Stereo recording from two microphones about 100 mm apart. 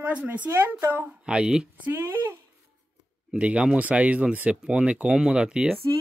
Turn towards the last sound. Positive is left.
turn(degrees=-10)  # may be behind; listen again after turning